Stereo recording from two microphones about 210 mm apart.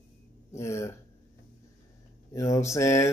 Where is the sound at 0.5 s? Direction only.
15° left (ahead or behind).